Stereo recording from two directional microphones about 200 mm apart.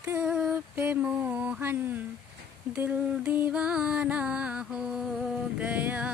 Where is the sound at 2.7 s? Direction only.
10° right (ahead or behind).